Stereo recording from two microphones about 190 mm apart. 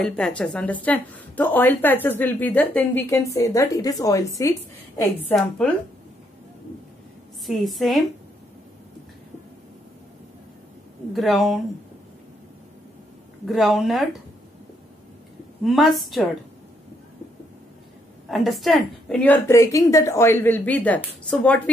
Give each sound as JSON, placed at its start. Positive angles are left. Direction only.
{"t": 0.0, "sound": "a woman's voice", "side_deg": 5}
{"t": 7.4, "sound": "a woman's voice", "side_deg": 0}
{"t": 11.1, "sound": "a woman's voice", "side_deg": 0}
{"t": 13.5, "sound": "a woman's voice", "side_deg": 0}
{"t": 15.6, "sound": "a woman's voice", "side_deg": 0}
{"t": 18.3, "sound": "a woman's voice", "side_deg": 0}